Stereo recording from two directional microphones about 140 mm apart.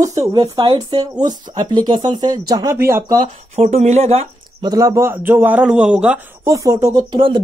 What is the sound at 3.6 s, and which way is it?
Speech, 55° right (ahead or behind).